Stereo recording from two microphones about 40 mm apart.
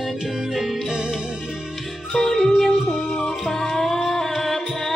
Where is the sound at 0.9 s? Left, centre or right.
Right.